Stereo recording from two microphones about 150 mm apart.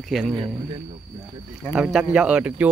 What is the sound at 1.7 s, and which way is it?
Speech, 5° right (ahead or behind).